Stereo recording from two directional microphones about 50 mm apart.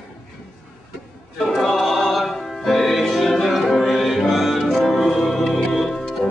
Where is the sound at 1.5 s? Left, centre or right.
Centre.